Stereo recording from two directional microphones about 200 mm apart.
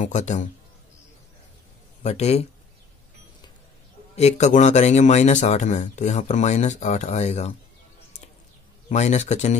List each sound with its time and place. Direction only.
0.0 s speech: 35° left (ahead or behind)
2.0 s speech: 30° left (ahead or behind)
4.2 s speech: 35° left (ahead or behind)
8.8 s speech: 35° left (ahead or behind)